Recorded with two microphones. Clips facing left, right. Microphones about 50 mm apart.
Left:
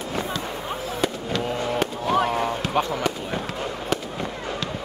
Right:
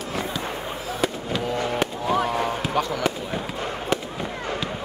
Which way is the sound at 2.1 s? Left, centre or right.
Left.